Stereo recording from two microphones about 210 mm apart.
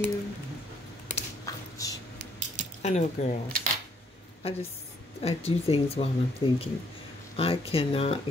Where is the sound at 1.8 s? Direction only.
15° left (ahead or behind).